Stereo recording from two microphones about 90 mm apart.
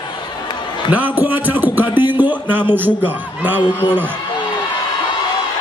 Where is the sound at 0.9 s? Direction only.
20° right (ahead or behind).